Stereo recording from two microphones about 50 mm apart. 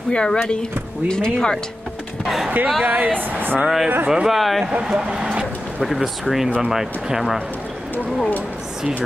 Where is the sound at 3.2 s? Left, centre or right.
Right.